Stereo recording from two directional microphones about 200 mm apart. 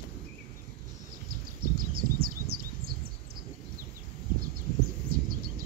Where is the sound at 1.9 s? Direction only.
50° right (ahead or behind).